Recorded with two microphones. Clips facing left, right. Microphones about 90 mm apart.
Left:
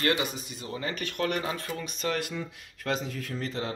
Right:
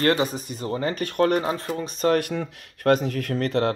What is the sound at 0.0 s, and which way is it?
Speech, 40° right (ahead or behind).